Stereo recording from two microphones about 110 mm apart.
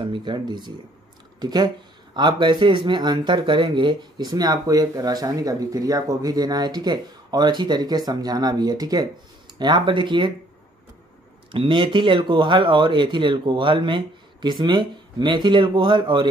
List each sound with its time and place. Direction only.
0.0 s speech: 45° right (ahead or behind)
11.5 s speech: 50° right (ahead or behind)